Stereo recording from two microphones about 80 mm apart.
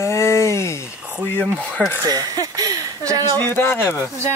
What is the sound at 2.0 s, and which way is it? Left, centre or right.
Speech, right.